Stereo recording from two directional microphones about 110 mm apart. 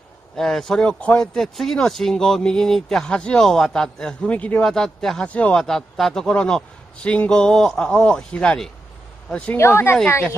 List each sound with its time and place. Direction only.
0.4 s speech: 5° left (ahead or behind)
9.6 s a woman's voice: 25° left (ahead or behind)